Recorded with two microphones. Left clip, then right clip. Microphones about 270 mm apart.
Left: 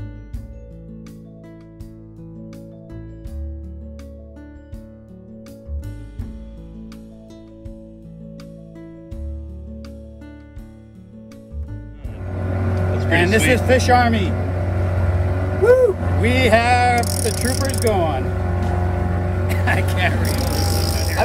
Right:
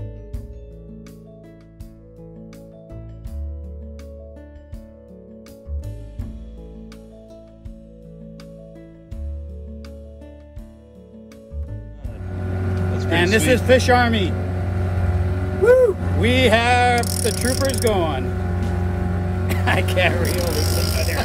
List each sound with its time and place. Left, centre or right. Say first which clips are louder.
12.2 s vehicle: left 4 dB; left
13.1 s speech: left 1 dB; centre
14.3 s vehicle: left 3 dB; left
15.6 s vehicle: even; centre
15.9 s vehicle: left 1 dB; left
16.2 s music: left 1 dB; centre
17.5 s speech: right 1 dB; centre
18.2 s vehicle: left 3 dB; left
19.5 s vehicle: even; centre
20.2 s speech: right 1 dB; right
20.5 s vehicle: left 1 dB; left
20.8 s vehicle: even; right